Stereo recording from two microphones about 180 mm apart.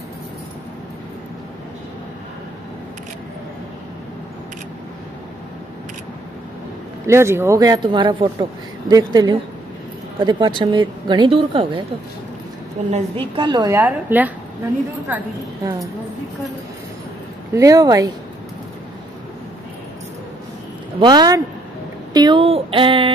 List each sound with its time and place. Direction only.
7.1 s speech: 15° right (ahead or behind)
12.9 s speech: 30° right (ahead or behind)
13.7 s a woman's voice: 10° right (ahead or behind)
17.6 s speech: 20° right (ahead or behind)
21.0 s speech: 25° right (ahead or behind)